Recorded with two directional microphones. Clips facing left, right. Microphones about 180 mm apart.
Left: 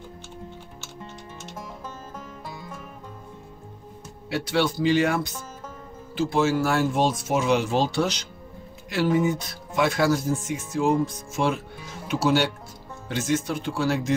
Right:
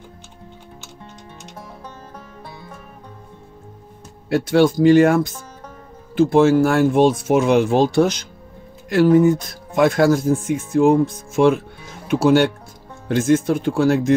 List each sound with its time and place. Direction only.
4.3 s speech: 50° right (ahead or behind)